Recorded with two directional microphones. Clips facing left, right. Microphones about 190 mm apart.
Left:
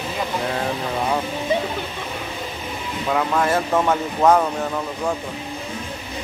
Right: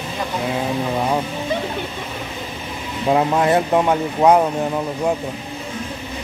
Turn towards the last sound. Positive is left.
turn(degrees=-15)  # may be behind; listen again after turning